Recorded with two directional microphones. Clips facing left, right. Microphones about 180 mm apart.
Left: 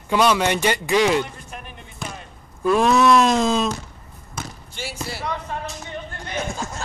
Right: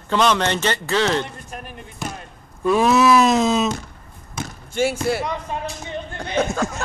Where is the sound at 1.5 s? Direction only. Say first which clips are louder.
Right 3 dB; 40° right (ahead or behind).